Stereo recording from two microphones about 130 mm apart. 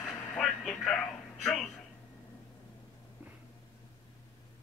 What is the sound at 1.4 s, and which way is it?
Speech, 5° left (ahead or behind).